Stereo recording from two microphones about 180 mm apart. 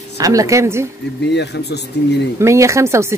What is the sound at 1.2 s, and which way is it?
Speech, 70° left (ahead or behind).